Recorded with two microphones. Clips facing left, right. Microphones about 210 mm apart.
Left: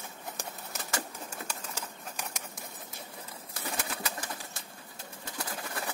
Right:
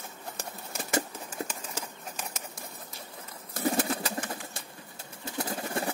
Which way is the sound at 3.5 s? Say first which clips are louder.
Right 10 dB; 40° right (ahead or behind).